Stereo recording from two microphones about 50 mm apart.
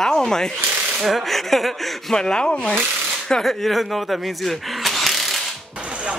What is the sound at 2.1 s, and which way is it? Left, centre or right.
Speech, centre.